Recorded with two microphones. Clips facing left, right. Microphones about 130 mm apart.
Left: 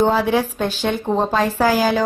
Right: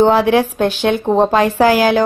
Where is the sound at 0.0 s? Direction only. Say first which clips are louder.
Right 5 dB; 70° right (ahead or behind).